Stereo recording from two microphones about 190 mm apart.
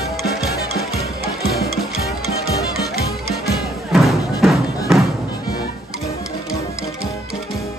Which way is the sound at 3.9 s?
Centre (ahead or behind).